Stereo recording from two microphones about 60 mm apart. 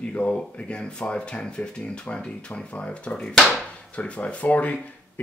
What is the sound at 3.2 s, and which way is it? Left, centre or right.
Speech, centre.